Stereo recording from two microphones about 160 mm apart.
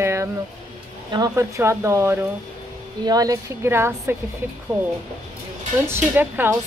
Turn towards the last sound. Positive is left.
turn(degrees=-15)  # may be behind; listen again after turning